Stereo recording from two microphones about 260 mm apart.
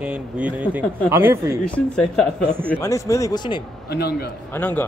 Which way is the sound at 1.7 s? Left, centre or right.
Centre.